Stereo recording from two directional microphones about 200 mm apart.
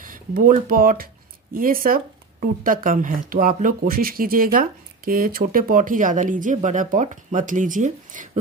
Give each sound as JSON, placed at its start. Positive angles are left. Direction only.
{"t": 0.0, "sound": "speech", "side_deg": -45}